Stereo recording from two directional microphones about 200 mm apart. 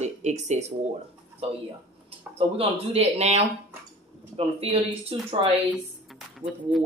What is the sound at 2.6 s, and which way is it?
Speech, 30° right (ahead or behind).